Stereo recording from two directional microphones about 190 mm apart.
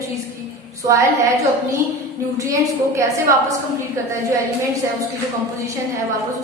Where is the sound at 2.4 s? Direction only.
15° right (ahead or behind).